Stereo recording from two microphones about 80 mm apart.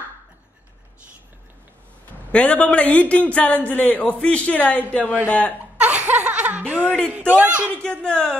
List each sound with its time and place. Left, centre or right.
2.3 s speech: centre
5.8 s laughter: centre
7.1 s a man's voice: centre
7.8 s speech: centre